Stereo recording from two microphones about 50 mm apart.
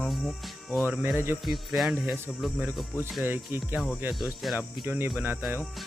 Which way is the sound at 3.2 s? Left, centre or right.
Right.